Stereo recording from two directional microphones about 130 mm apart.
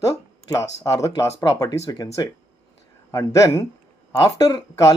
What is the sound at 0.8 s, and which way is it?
Speech, 25° left (ahead or behind).